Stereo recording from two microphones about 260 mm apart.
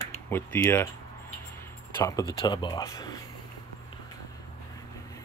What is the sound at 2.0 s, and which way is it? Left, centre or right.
Speech, centre.